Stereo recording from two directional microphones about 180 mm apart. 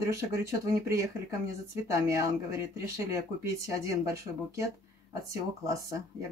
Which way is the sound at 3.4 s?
15° right (ahead or behind).